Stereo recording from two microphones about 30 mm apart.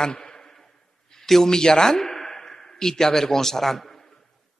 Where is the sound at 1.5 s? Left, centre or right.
Centre.